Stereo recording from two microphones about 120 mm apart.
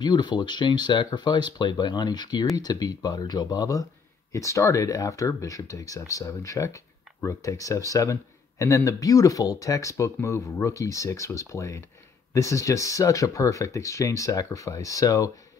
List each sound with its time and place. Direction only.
0.0 s speech: 35° left (ahead or behind)